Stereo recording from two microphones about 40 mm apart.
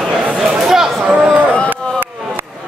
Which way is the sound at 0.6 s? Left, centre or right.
Centre.